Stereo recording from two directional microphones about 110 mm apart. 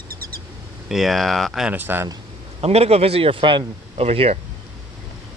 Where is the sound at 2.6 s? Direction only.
70° right (ahead or behind); by 3.6 s 50° right (ahead or behind).